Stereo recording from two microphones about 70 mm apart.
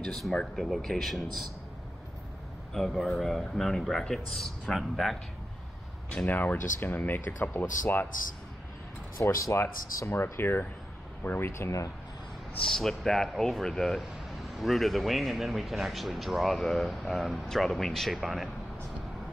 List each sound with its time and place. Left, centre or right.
0.0 s speech: centre
2.7 s speech: centre
6.2 s speech: left
9.2 s speech: left
12.7 s speech: centre